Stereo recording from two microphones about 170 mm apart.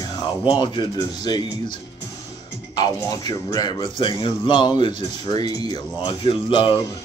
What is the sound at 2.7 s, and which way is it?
Speech, 25° left (ahead or behind).